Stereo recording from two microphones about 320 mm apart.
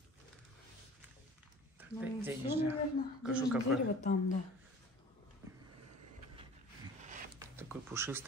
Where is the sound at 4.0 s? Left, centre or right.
Left.